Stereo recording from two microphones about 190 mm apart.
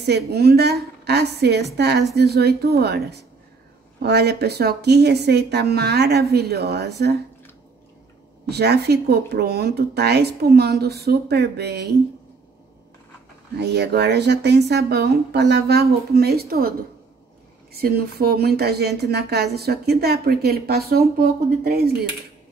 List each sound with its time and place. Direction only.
0.0 s a woman's voice: 60° right (ahead or behind)
8.5 s a woman's voice: 60° right (ahead or behind)
13.6 s a woman's voice: 60° right (ahead or behind)
17.7 s a woman's voice: 55° right (ahead or behind)